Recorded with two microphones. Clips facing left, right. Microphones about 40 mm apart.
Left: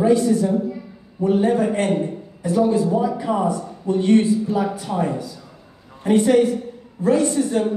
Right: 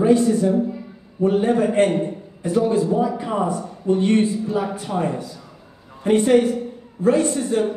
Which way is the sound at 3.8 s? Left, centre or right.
Right.